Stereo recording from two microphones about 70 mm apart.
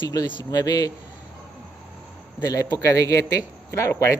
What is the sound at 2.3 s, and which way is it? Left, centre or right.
A man's voice, left.